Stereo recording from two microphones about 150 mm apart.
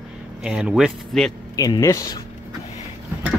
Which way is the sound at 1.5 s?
25° left (ahead or behind).